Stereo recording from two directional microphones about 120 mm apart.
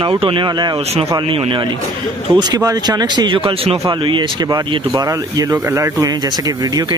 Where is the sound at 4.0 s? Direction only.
40° right (ahead or behind).